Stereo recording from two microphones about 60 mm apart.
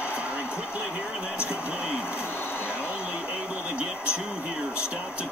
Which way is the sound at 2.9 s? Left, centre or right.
Right.